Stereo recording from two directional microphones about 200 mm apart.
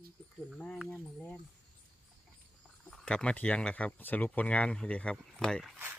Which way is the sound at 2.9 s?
5° left (ahead or behind).